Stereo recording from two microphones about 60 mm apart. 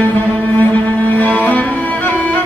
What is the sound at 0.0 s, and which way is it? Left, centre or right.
Music, left.